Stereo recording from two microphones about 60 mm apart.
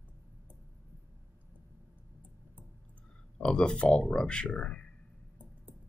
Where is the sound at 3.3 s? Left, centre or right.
Centre.